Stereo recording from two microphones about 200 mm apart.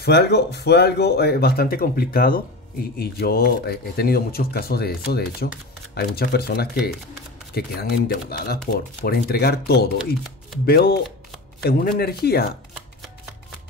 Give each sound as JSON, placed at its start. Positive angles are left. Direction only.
{"t": 0.0, "sound": "speech", "side_deg": 55}